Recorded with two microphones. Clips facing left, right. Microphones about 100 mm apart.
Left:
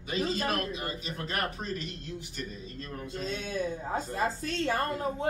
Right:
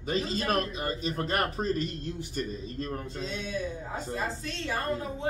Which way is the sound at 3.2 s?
45° left (ahead or behind).